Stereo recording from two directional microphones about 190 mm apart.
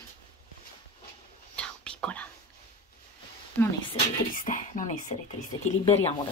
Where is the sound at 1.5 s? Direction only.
5° left (ahead or behind).